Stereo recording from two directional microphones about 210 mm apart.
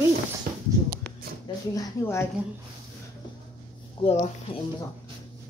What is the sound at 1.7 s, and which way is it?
Speech, 15° left (ahead or behind).